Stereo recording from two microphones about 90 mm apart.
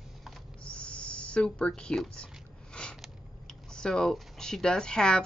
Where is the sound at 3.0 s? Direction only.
10° left (ahead or behind).